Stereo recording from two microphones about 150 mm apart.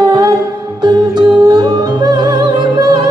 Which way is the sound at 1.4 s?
25° right (ahead or behind).